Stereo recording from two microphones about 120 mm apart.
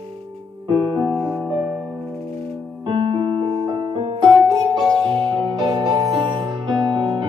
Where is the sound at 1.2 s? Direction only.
5° right (ahead or behind).